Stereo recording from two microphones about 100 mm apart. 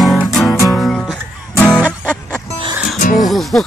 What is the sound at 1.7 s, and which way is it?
Music, 15° right (ahead or behind).